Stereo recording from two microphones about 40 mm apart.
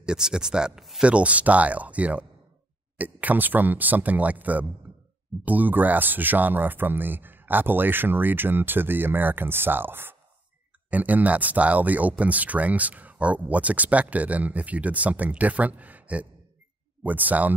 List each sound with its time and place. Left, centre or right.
0.0 s speech: centre
0.7 s speech: centre
1.0 s speech: right
10.9 s speech: right